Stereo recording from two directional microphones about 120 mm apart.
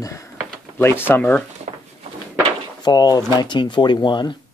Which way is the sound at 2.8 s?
35° left (ahead or behind).